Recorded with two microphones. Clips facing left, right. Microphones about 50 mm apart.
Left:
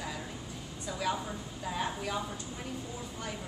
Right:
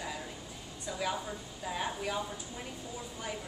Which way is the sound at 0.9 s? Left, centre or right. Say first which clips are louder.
Left 1 dB; centre.